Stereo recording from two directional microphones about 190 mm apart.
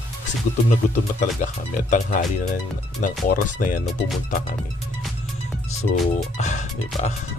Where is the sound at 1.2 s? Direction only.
45° left (ahead or behind).